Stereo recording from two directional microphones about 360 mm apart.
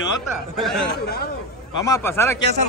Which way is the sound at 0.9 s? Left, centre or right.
Left.